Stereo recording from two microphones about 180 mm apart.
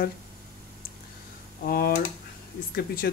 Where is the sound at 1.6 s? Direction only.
55° left (ahead or behind).